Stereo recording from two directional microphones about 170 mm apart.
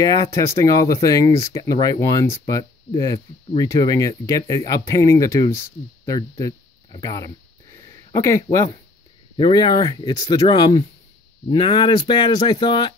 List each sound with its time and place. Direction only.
0.0 s speech: 20° left (ahead or behind)
7.7 s a sound: 15° left (ahead or behind)
9.4 s speech: 25° left (ahead or behind)